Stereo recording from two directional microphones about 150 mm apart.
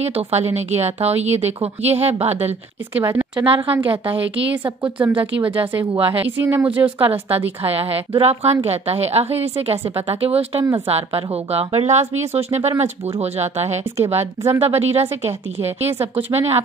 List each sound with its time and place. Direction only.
0.0 s speech: 45° right (ahead or behind)
2.9 s speech: 15° right (ahead or behind)
3.3 s a woman's voice: 35° right (ahead or behind)
4.8 s speech: 10° right (ahead or behind)
5.4 s a woman's voice: 35° right (ahead or behind)
6.3 s speech: 15° right (ahead or behind)
7.0 s a woman's voice: 40° right (ahead or behind)